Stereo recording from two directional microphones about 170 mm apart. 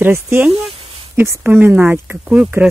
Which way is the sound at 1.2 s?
10° right (ahead or behind).